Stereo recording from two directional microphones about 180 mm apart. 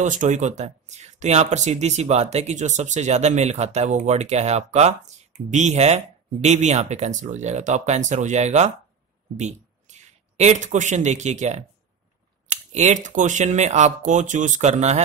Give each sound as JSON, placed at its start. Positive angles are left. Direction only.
{"t": 0.0, "sound": "speech", "side_deg": -45}